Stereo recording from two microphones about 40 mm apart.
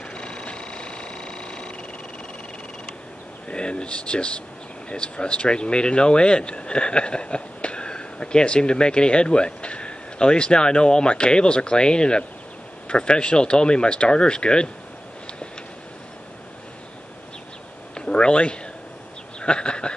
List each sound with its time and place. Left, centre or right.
0.1 s vehicle: left
3.4 s speech: left
17.9 s a sound: left